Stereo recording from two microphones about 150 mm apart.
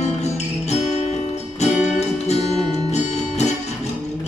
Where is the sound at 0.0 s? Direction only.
45° left (ahead or behind).